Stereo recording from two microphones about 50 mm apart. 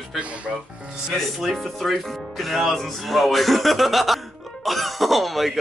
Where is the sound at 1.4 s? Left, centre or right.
Centre.